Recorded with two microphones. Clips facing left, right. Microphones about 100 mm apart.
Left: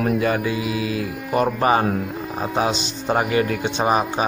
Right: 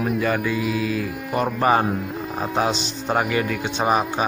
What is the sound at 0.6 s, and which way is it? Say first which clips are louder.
Music: right 1 dB; 45° right (ahead or behind).